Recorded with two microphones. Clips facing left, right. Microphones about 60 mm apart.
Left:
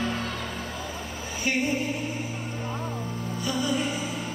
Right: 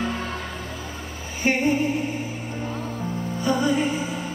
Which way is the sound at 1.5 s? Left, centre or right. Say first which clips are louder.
Right 5 dB; right.